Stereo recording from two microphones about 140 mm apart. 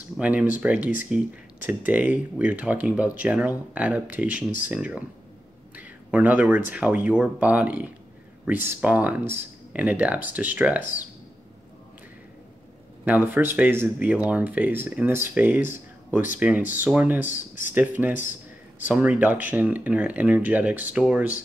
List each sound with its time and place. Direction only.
0.2 s speech: 10° right (ahead or behind)
5.8 s a sound: 10° right (ahead or behind)
6.7 s speech: 10° right (ahead or behind)
13.0 s speech: 15° right (ahead or behind)
17.3 s speech: 70° left (ahead or behind)
17.7 s speech: 10° right (ahead or behind)